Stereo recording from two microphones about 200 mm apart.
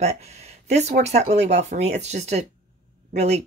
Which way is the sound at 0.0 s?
35° right (ahead or behind).